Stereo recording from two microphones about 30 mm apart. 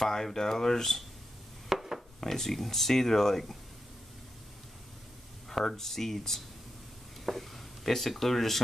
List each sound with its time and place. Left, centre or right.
0.0 s speech: centre
1.7 s wood: centre
2.1 s speech: centre
5.5 s speech: centre